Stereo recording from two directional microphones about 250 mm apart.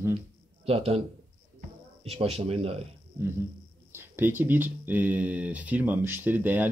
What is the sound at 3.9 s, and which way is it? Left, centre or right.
Speech, centre.